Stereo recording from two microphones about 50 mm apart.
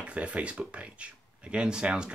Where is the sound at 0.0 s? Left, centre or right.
Right.